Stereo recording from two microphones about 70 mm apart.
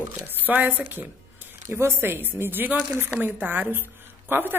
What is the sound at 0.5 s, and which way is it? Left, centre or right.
A woman's voice, right.